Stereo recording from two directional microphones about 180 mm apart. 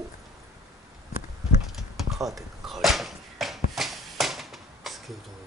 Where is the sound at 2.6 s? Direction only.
Centre (ahead or behind).